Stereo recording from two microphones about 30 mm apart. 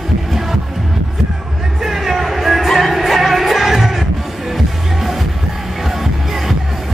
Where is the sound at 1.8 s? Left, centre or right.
Centre.